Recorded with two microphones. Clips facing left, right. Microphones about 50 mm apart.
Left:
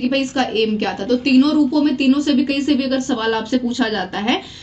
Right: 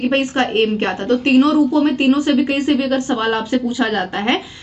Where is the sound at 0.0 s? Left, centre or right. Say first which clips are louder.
Right 1 dB; right.